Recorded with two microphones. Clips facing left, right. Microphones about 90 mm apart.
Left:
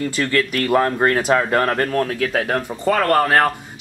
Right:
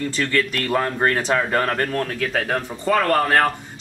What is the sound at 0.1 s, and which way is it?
Speech, 5° left (ahead or behind).